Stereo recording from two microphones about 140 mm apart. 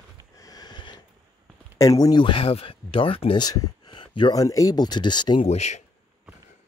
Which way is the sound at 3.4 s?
25° left (ahead or behind).